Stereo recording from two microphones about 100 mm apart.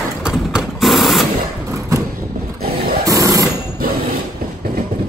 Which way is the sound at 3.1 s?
35° right (ahead or behind).